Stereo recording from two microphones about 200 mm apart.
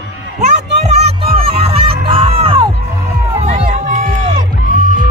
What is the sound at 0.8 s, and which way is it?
Music, 30° right (ahead or behind).